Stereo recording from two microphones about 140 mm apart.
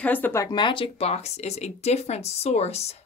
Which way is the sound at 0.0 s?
10° left (ahead or behind).